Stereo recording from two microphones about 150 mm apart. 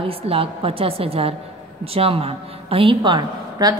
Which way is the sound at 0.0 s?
40° right (ahead or behind).